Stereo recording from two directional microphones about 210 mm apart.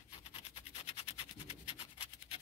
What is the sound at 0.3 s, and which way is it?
Rub, 25° left (ahead or behind).